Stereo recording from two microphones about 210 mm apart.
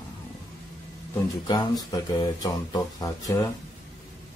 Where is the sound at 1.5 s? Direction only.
20° left (ahead or behind).